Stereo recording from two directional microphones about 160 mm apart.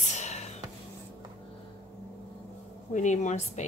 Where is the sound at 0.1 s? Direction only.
45° left (ahead or behind).